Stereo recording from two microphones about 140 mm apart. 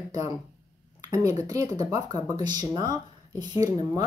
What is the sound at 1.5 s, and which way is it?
Speech, 25° right (ahead or behind).